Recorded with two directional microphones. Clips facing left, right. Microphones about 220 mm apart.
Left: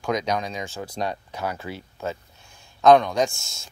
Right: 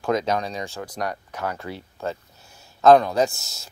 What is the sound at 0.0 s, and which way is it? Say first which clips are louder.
Speech: right 2 dB; 5° right (ahead or behind).